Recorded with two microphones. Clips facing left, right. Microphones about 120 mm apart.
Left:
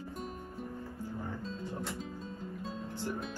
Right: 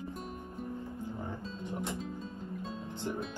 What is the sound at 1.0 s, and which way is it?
Music, 20° right (ahead or behind).